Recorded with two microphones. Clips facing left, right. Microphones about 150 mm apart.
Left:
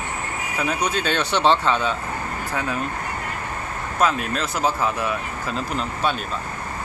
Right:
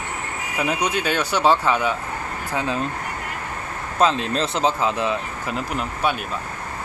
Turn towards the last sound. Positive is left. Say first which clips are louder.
# even
turn(degrees=-15)  # may be behind; listen again after turning